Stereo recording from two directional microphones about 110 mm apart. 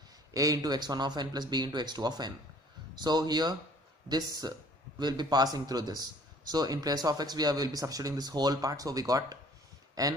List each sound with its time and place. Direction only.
0.3 s speech: 30° right (ahead or behind)